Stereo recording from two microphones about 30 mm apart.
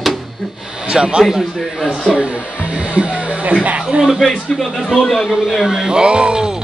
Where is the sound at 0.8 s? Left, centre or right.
Right.